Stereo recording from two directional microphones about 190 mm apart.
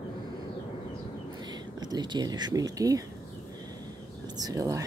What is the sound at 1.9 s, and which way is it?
Speech, 20° right (ahead or behind).